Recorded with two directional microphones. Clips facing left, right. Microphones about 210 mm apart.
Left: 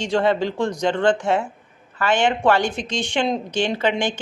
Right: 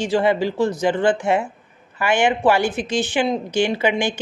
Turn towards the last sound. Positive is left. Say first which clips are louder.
# right 1 dB
turn(degrees=-10)  # may be behind; listen again after turning